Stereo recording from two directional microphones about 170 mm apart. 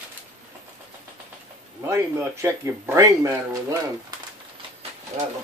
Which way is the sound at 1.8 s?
15° right (ahead or behind).